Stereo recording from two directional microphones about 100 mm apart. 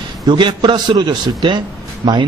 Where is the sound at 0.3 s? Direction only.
50° right (ahead or behind).